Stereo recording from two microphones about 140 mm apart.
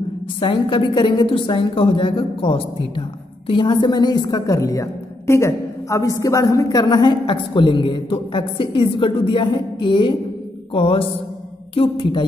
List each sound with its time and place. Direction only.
0.4 s a woman's voice: 35° left (ahead or behind)